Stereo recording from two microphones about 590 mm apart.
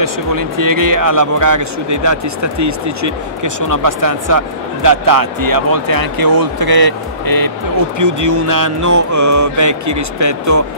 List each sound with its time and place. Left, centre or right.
0.0 s speech: right
8.0 s mantra: right